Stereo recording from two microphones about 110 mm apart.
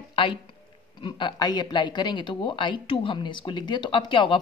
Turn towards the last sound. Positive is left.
turn(degrees=50)  # may be behind; listen again after turning